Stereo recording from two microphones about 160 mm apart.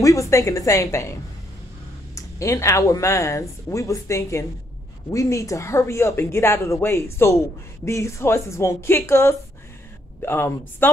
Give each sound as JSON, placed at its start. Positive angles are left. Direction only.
{"t": 0.0, "sound": "speech", "side_deg": 20}
{"t": 2.1, "sound": "speech", "side_deg": 20}